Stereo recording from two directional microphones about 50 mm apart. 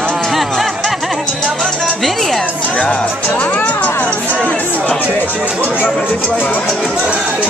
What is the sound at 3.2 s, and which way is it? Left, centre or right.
Music, left.